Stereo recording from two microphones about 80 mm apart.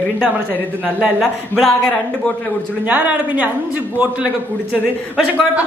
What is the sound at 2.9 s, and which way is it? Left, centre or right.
A man's voice, centre.